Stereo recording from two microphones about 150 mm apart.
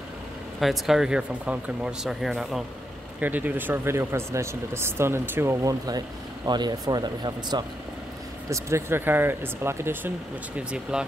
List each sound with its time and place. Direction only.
0.6 s speech: centre (ahead or behind)